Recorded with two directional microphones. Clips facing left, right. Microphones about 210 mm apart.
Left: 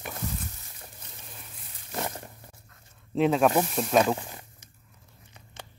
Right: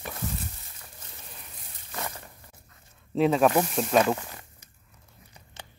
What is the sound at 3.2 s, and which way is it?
Speech, centre (ahead or behind).